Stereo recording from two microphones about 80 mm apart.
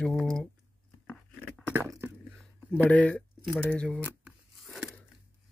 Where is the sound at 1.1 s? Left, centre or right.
Centre.